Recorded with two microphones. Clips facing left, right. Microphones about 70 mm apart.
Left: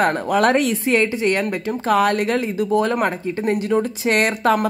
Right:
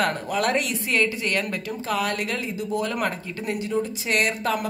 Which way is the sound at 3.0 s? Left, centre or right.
Left.